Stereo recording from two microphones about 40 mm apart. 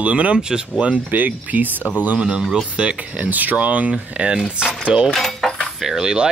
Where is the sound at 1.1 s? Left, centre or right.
Right.